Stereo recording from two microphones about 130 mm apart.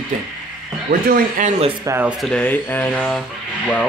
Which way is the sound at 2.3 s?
15° left (ahead or behind).